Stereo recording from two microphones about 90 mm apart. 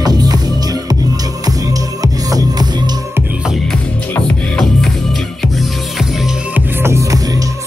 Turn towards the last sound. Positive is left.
turn(degrees=-30)  # may be behind; listen again after turning